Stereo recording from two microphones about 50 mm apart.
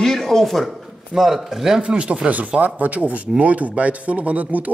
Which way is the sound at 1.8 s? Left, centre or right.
Right.